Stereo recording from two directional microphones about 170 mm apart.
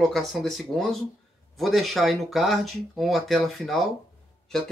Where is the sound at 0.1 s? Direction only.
Centre (ahead or behind).